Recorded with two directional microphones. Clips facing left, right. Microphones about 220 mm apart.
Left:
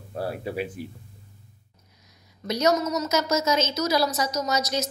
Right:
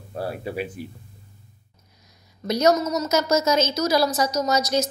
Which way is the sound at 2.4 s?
45° right (ahead or behind).